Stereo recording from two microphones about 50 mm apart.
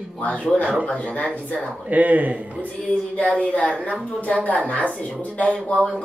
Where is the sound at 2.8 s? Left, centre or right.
Left.